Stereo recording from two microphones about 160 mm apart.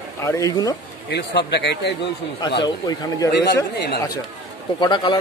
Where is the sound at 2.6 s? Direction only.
25° left (ahead or behind).